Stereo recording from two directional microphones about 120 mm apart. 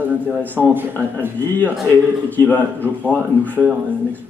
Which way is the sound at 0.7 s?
15° right (ahead or behind).